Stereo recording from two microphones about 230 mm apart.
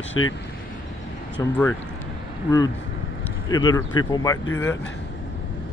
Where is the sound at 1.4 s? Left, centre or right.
Centre.